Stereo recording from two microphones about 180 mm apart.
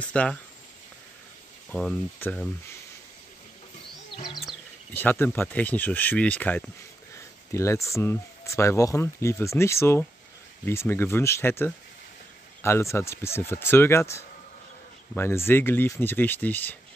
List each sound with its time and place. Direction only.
0.0 s speech: 5° left (ahead or behind)
1.7 s speech: 5° left (ahead or behind)
4.1 s music: 25° left (ahead or behind)
4.9 s speech: 10° left (ahead or behind)